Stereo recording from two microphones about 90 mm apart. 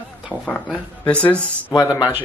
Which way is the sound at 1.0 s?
15° left (ahead or behind).